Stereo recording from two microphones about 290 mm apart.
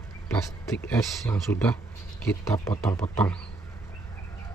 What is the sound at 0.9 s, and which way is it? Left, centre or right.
Speech, centre.